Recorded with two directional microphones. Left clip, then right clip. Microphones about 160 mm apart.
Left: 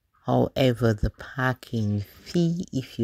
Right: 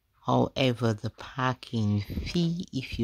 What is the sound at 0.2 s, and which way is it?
Speech, 15° left (ahead or behind).